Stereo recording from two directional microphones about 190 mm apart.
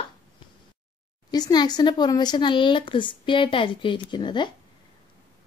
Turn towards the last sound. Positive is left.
turn(degrees=25)  # may be behind; listen again after turning